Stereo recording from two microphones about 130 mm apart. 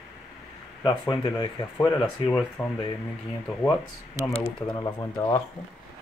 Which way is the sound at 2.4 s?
5° left (ahead or behind).